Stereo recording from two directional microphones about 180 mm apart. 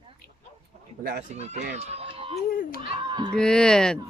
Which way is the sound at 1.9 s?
35° right (ahead or behind).